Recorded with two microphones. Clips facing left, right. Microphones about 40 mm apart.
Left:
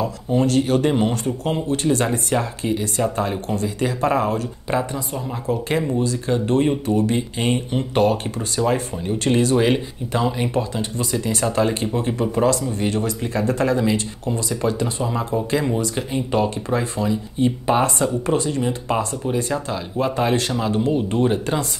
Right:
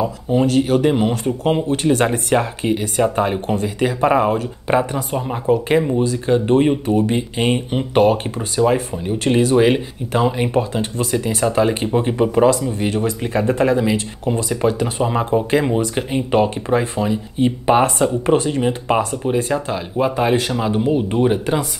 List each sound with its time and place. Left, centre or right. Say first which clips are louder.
0.0 s speech: right 3 dB; centre; by 5.6 s right
5.7 s speech: right 4 dB; centre
14.3 s speech: right 4 dB; right